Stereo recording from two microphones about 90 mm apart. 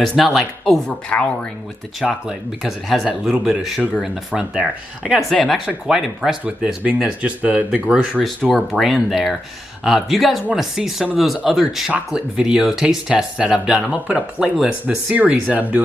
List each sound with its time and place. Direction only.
0.0 s speech: centre (ahead or behind)
0.8 s a woman's voice: 10° left (ahead or behind)
2.0 s speech: 5° right (ahead or behind)
5.3 s speech: 5° left (ahead or behind)
5.9 s speech: 5° right (ahead or behind)